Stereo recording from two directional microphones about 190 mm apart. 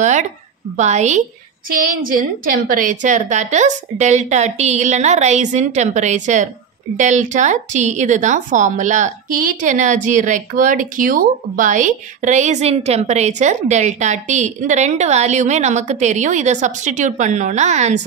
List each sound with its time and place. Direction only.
0.0 s a woman's voice: 40° right (ahead or behind)
1.7 s a woman's voice: 50° right (ahead or behind)